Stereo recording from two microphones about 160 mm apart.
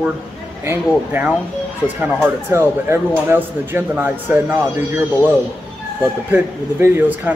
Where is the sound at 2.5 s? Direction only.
15° right (ahead or behind).